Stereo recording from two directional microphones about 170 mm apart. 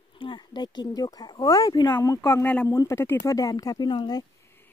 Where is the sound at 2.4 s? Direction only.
10° left (ahead or behind).